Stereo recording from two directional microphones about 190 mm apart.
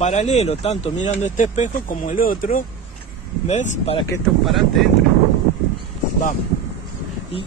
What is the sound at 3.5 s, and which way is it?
Speech, 35° left (ahead or behind).